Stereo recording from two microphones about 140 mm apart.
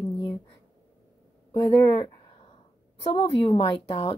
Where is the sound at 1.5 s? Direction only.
35° left (ahead or behind).